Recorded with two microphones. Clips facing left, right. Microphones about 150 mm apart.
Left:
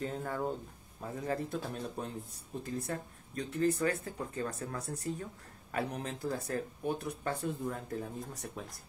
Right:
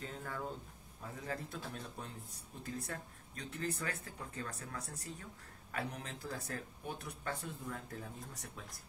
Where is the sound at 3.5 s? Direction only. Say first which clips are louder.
Left 10 dB; 35° left (ahead or behind).